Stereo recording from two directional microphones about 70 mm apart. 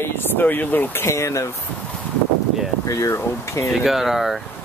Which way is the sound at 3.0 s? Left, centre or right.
Left.